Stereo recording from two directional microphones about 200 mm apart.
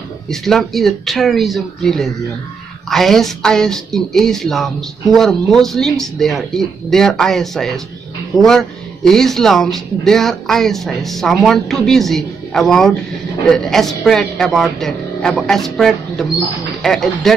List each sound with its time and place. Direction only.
0.3 s speech: centre (ahead or behind)